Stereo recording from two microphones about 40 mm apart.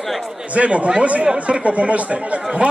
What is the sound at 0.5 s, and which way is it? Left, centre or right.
Speech, right.